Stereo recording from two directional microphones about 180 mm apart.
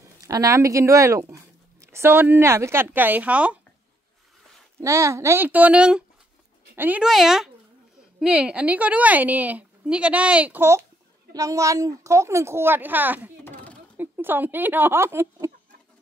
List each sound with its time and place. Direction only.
0.2 s speech: 20° right (ahead or behind)
4.7 s a woman's voice: 15° right (ahead or behind)
13.4 s a sound: 10° left (ahead or behind)
13.9 s a woman's voice: 10° right (ahead or behind)